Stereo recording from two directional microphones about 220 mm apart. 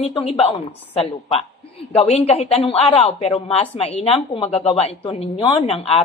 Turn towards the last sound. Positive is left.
turn(degrees=25)  # may be behind; listen again after turning